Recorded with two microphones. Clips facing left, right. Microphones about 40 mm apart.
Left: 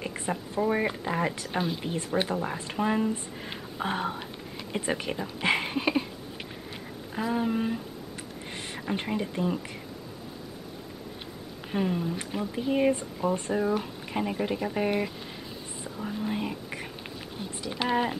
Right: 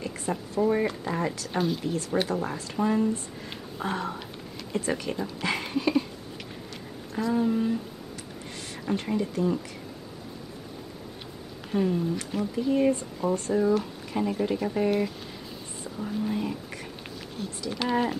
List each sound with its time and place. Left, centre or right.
0.0 s a sound: left
0.6 s speech: left
7.2 s speech: left
8.9 s speech: left
11.7 s speech: left
12.6 s speech: left